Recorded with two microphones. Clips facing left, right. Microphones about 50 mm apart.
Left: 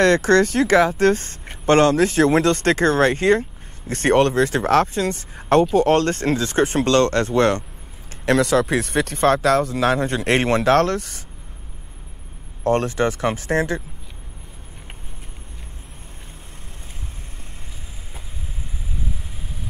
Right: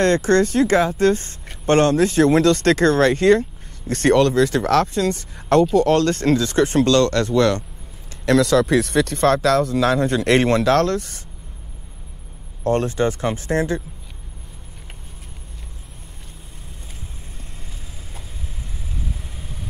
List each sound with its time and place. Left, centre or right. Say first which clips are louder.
0.0 s speech: left 1 dB; left
2.2 s speech: right 2 dB; left
12.6 s speech: even; left